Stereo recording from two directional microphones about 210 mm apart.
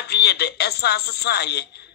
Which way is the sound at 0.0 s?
50° left (ahead or behind).